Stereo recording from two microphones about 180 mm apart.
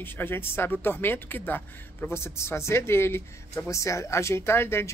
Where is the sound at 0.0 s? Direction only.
10° left (ahead or behind).